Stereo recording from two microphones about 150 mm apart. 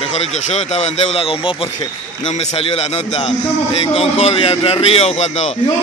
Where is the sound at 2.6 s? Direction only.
40° left (ahead or behind).